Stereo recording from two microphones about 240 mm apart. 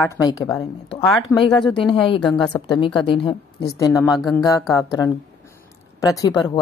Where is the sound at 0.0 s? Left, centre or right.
Centre.